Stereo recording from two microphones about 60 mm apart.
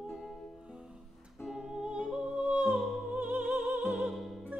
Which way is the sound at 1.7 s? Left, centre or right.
Centre.